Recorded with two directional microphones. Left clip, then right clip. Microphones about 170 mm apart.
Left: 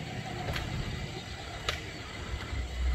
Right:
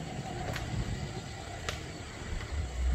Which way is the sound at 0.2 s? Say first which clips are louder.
Left 2 dB; 20° right (ahead or behind).